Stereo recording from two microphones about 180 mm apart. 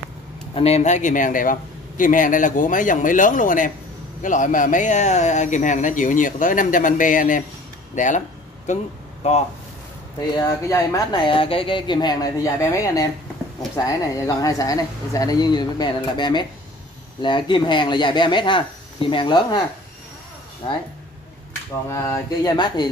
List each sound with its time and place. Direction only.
0.6 s a man's voice: 35° left (ahead or behind)
10.3 s speech: 20° left (ahead or behind)
21.8 s speech: 15° left (ahead or behind)